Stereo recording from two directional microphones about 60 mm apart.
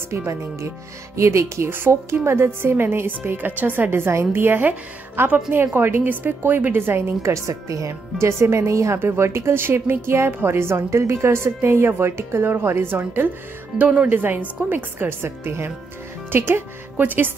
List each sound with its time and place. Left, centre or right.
0.3 s speech: right
2.2 s a woman's voice: right
7.3 s speech: right
9.0 s a woman's voice: right
13.7 s speech: right
14.0 s a woman's voice: right